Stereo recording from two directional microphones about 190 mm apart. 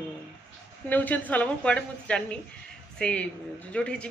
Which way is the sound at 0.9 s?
10° left (ahead or behind).